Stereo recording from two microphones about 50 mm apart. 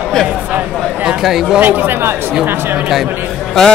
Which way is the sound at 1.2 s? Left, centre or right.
Centre.